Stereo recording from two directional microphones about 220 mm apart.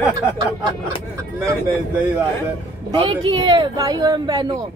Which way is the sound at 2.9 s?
20° right (ahead or behind).